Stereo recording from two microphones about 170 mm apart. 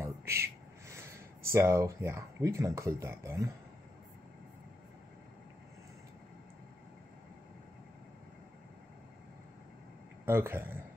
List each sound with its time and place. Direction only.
0.0 s a sound: 15° right (ahead or behind)
1.5 s speech: 15° right (ahead or behind)
10.2 s speech: 15° right (ahead or behind)